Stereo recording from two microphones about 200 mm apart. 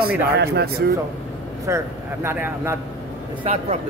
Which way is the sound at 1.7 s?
15° right (ahead or behind).